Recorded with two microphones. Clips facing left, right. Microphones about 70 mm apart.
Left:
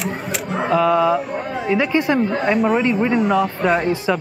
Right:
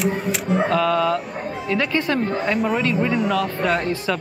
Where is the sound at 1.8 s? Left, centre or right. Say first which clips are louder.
Left 3 dB; centre.